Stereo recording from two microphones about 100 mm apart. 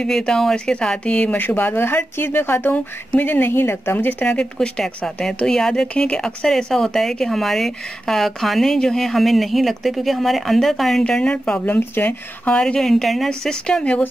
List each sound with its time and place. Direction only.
0.0 s speech: 5° left (ahead or behind)